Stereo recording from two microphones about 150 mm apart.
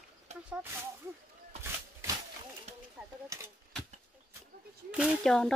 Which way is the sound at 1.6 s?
15° right (ahead or behind).